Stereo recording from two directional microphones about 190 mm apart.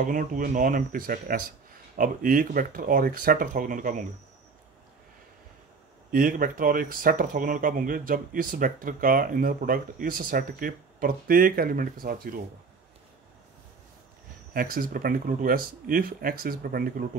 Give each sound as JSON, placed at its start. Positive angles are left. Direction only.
{"t": 0.0, "sound": "speech", "side_deg": -45}
{"t": 6.1, "sound": "speech", "side_deg": -45}
{"t": 14.5, "sound": "speech", "side_deg": -50}